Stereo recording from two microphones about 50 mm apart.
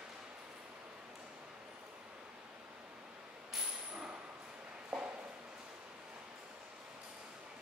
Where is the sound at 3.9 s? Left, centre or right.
Right.